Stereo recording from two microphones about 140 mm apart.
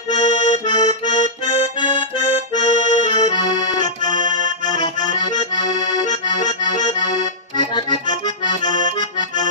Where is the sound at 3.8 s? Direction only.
30° left (ahead or behind).